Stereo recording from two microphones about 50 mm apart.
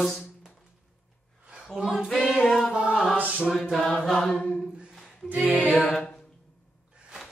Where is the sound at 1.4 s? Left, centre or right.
Centre.